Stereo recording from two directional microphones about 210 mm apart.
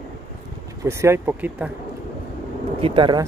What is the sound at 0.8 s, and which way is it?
Speech, 15° right (ahead or behind).